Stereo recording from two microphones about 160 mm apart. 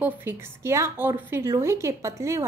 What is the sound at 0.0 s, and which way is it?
A woman's voice, 15° right (ahead or behind).